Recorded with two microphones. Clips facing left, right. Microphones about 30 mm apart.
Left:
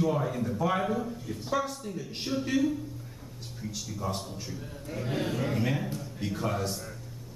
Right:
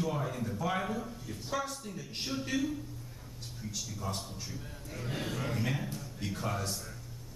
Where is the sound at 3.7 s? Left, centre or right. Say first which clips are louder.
Left 4 dB; centre.